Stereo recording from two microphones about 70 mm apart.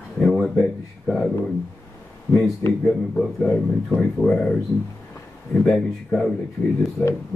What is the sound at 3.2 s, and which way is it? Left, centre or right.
A man's voice, centre.